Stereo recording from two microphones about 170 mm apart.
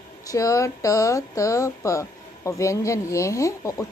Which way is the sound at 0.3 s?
20° left (ahead or behind).